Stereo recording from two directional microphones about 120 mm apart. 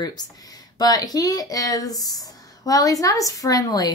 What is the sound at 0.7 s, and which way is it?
Speech, 30° left (ahead or behind).